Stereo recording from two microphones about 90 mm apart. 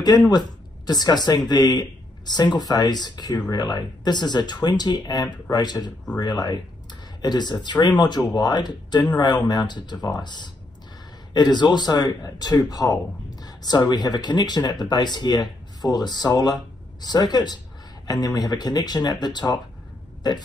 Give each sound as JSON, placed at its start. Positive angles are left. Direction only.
{"t": 0.3, "sound": "speech", "side_deg": 50}